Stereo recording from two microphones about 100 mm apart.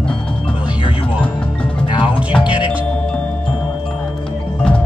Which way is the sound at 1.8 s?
55° left (ahead or behind).